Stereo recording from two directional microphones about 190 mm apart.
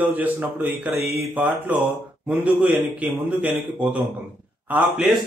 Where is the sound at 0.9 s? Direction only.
30° left (ahead or behind).